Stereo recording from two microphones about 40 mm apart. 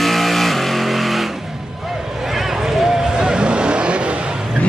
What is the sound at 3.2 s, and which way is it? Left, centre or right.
Vehicle, right.